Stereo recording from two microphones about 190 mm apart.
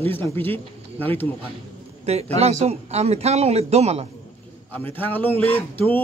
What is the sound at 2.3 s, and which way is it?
A man's voice, 35° right (ahead or behind).